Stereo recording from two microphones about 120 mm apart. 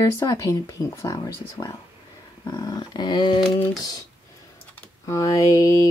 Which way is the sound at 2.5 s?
35° left (ahead or behind).